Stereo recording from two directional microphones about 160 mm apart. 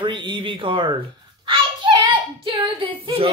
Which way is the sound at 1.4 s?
30° right (ahead or behind).